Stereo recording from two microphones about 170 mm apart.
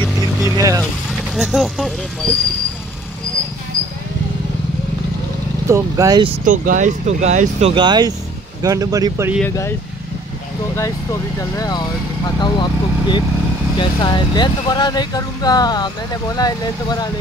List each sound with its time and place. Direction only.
0.5 s vehicle: 20° right (ahead or behind)
1.1 s speech: centre (ahead or behind)
5.7 s speech: 20° right (ahead or behind)
6.4 s speech: 50° right (ahead or behind)
7.7 s speech: 25° right (ahead or behind)
9.5 s speech: 15° left (ahead or behind)